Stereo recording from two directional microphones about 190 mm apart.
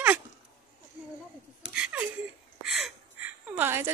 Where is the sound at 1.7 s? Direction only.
5° right (ahead or behind).